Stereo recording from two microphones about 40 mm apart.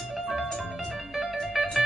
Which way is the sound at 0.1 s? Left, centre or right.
Centre.